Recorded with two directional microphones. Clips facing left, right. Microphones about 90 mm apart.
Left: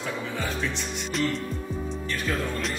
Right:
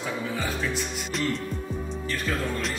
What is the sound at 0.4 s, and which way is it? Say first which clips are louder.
Music: right 1 dB; centre (ahead or behind).